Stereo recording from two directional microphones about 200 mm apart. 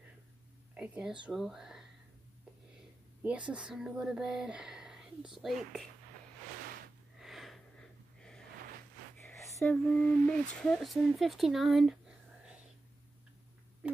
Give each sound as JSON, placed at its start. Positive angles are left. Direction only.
{"t": 0.7, "sound": "speech", "side_deg": -5}
{"t": 3.2, "sound": "speech", "side_deg": -5}
{"t": 7.2, "sound": "wheeze", "side_deg": 0}
{"t": 9.2, "sound": "a sound", "side_deg": 5}